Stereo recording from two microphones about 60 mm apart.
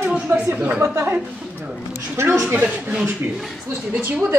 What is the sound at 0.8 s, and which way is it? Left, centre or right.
Speech, right.